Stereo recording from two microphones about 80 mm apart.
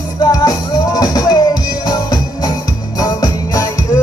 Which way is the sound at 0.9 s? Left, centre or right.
Left.